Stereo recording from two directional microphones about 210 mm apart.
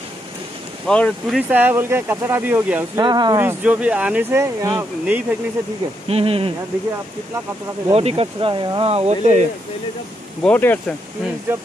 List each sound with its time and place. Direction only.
0.8 s speech: 5° left (ahead or behind)
1.5 s speech: 10° right (ahead or behind)
3.0 s speech: 20° right (ahead or behind)
6.0 s speech: 30° right (ahead or behind)
7.9 s speech: 30° right (ahead or behind)
10.4 s speech: 10° left (ahead or behind)
11.5 s speech: 10° right (ahead or behind)